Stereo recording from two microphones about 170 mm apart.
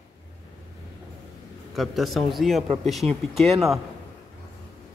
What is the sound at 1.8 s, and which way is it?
A man's voice, centre (ahead or behind).